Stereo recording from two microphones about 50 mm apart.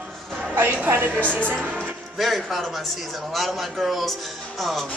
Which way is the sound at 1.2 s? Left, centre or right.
Left.